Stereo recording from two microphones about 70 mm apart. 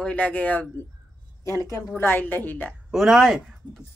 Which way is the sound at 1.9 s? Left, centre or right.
Left.